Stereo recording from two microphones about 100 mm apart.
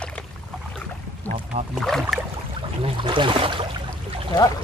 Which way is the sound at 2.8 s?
55° right (ahead or behind).